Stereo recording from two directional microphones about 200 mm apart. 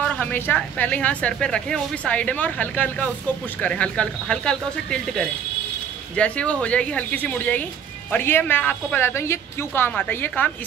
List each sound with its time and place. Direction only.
0.0 s a woman's voice: 5° left (ahead or behind)